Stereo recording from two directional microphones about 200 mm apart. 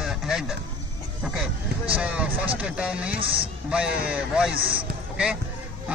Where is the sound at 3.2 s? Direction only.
25° right (ahead or behind).